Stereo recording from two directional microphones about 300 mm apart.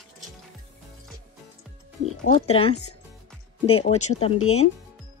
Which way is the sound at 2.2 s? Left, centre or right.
Centre.